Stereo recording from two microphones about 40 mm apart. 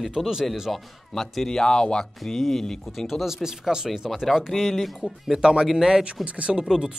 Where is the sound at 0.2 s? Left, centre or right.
Centre.